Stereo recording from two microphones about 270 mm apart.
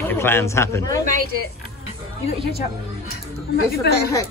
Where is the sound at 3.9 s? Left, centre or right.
Left.